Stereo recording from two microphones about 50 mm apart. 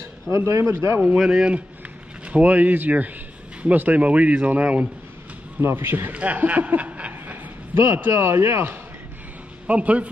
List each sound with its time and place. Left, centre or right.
0.5 s speech: right
1.0 s speech: centre
2.2 s speech: right
5.6 s a man's voice: right
6.1 s speech: right
7.7 s speech: right
9.7 s speech: right